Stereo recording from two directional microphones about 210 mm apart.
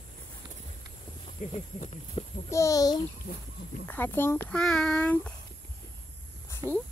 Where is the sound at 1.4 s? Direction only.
35° left (ahead or behind).